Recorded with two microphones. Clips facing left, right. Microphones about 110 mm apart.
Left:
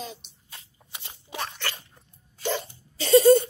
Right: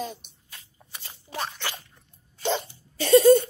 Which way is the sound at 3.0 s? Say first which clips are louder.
Right 1 dB; 55° right (ahead or behind).